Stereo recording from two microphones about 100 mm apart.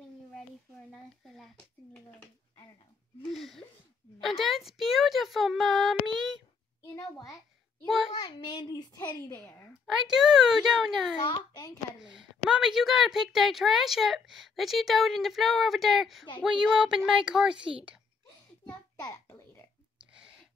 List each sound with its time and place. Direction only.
1.2 s a woman's voice: centre (ahead or behind)
3.3 s a woman's voice: centre (ahead or behind)
6.8 s a child's voice: 40° left (ahead or behind)
8.1 s a child's voice: 50° left (ahead or behind)
10.0 s a woman's voice: 5° right (ahead or behind)
11.2 s a child's voice: 45° left (ahead or behind)
12.0 s a woman's voice: 5° right (ahead or behind)
18.7 s a child's voice: 40° left (ahead or behind)
19.2 s babbling: 30° left (ahead or behind)